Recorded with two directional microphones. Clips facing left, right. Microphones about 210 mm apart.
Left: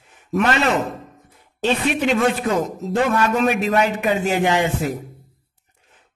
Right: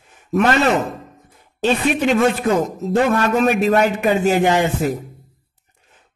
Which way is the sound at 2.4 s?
45° right (ahead or behind).